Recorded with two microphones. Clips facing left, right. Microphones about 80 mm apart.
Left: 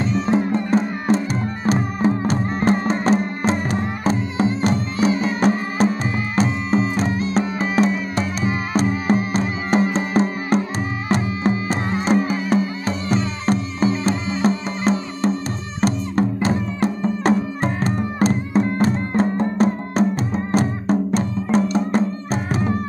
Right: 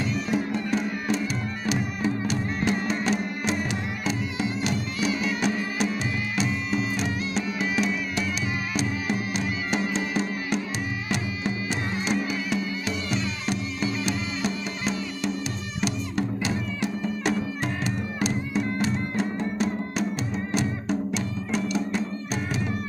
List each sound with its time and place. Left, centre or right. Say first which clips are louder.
0.0 s music: left 7 dB; left